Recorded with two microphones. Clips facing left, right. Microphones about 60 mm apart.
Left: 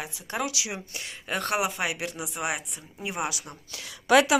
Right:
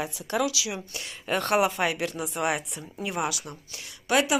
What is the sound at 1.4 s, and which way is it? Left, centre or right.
Speech, centre.